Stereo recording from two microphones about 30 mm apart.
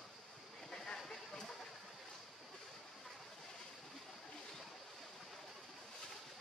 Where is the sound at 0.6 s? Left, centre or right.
Centre.